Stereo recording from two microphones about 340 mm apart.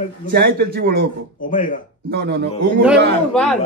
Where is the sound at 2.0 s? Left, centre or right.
Right.